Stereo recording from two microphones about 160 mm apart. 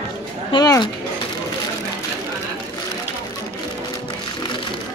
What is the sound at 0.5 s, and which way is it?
Speech, 25° left (ahead or behind).